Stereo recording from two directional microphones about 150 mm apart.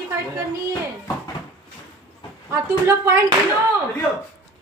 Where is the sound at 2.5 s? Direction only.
20° right (ahead or behind).